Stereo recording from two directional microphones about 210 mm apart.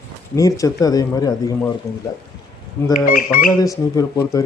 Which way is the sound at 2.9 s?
40° left (ahead or behind).